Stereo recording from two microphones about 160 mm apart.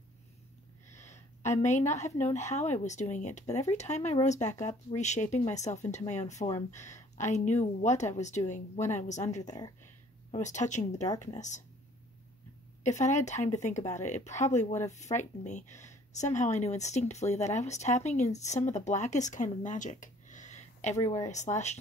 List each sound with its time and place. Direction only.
0.9 s speech: 45° left (ahead or behind)
10.4 s speech: 50° left (ahead or behind)
12.8 s speech: 50° left (ahead or behind)